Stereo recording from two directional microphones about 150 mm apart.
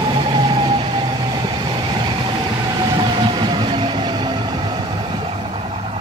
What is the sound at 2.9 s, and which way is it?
Train, 30° right (ahead or behind).